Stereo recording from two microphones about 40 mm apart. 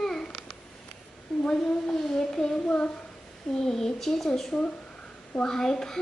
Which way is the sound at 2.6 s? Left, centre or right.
Left.